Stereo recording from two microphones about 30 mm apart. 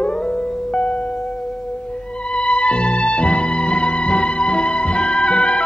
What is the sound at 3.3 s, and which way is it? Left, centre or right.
Music, left.